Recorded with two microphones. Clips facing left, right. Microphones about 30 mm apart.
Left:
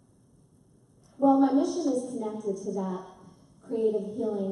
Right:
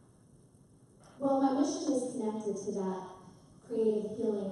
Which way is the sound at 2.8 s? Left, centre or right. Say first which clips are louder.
Left 3 dB; centre.